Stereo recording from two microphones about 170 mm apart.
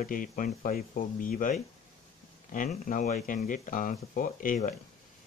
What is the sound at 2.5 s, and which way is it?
Speech, 50° left (ahead or behind).